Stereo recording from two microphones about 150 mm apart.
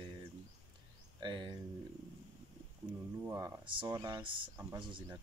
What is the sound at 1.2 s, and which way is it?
Speech, 30° right (ahead or behind).